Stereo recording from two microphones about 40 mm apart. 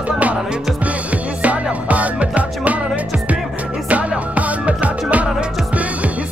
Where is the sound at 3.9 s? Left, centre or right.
Right.